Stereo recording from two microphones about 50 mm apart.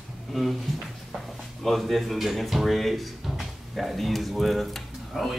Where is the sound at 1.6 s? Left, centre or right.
Centre.